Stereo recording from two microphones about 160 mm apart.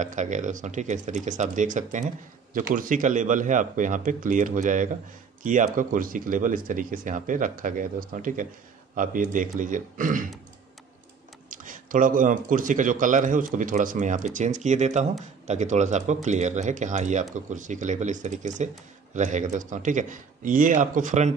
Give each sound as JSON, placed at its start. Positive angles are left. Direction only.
{"t": 0.0, "sound": "speech", "side_deg": -50}
{"t": 11.5, "sound": "speech", "side_deg": -55}